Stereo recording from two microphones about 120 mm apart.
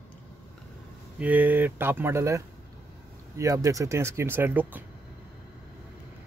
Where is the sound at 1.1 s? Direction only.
15° right (ahead or behind).